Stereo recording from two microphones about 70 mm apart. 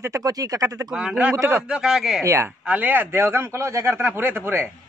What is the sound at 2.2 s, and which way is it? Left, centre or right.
Speech, right.